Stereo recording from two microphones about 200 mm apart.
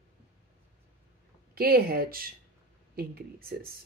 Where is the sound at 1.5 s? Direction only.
50° right (ahead or behind).